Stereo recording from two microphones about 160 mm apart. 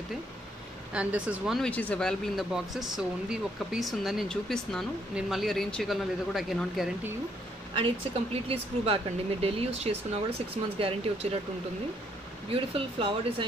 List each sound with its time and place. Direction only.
0.9 s speech: 10° right (ahead or behind)
1.6 s speech: 10° left (ahead or behind)
7.7 s speech: 35° right (ahead or behind)
12.4 s speech: 35° right (ahead or behind)